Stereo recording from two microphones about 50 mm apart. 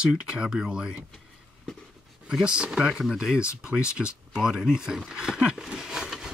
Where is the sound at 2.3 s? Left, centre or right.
Centre.